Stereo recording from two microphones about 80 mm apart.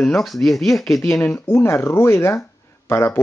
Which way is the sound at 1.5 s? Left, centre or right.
Left.